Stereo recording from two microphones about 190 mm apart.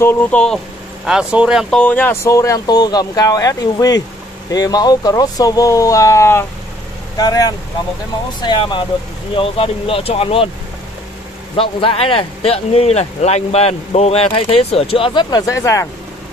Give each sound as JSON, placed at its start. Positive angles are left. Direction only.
{"t": 0.0, "sound": "speech", "side_deg": 10}
{"t": 11.5, "sound": "speech", "side_deg": 30}